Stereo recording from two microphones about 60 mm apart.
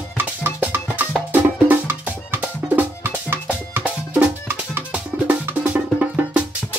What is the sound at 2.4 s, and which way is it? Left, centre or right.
Music, right.